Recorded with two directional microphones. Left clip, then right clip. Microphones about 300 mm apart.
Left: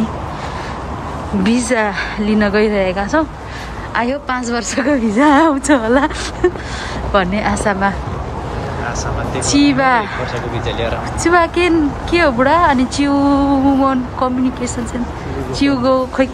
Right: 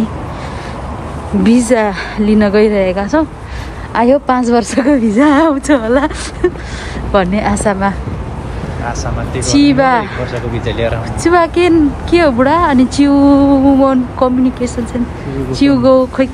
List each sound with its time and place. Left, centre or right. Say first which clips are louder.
1.8 s speech: right 3 dB; centre
9.6 s speech: right 3 dB; centre
10.7 s speech: right 4 dB; right
11.3 s speech: right 3 dB; centre
15.6 s speech: right 5 dB; centre